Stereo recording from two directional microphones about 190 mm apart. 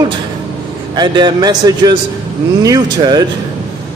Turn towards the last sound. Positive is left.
turn(degrees=-20)  # may be behind; listen again after turning